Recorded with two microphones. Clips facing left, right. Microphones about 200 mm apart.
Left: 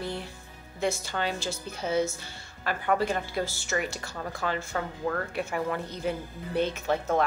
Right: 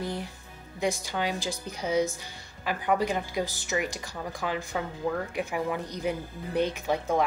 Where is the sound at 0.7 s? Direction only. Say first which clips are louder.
Even; 15° right (ahead or behind).